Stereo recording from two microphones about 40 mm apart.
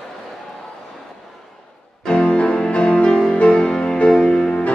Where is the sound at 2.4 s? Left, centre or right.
Left.